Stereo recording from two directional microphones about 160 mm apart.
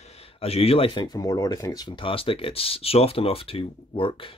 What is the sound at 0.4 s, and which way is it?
Speech, 35° left (ahead or behind).